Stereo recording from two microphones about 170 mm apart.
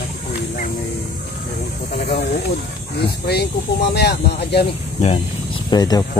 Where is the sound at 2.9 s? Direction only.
70° left (ahead or behind).